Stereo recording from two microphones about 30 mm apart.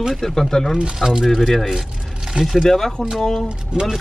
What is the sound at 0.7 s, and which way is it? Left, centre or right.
Speech, right.